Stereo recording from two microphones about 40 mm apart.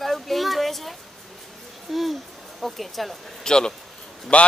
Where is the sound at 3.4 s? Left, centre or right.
Centre.